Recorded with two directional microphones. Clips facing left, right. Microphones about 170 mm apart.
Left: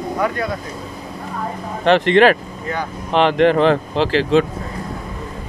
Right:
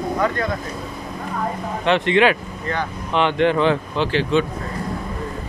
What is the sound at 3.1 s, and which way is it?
Speech, 35° left (ahead or behind).